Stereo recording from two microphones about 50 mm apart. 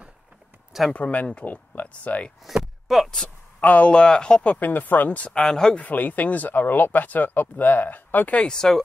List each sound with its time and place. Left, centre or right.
0.9 s speech: left
1.4 s speech: left
2.4 s a sound: centre
3.6 s speech: left
3.9 s speech: centre
4.6 s speech: left
5.4 s speech: centre
5.8 s speech: left
8.4 s speech: centre